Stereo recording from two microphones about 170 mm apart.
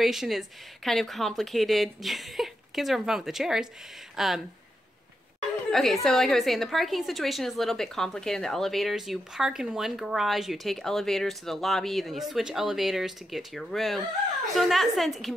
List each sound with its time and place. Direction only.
0.0 s a woman's voice: centre (ahead or behind)
5.7 s a woman's voice: centre (ahead or behind)